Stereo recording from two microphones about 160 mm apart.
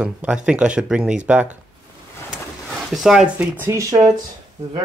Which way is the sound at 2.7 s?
Centre (ahead or behind).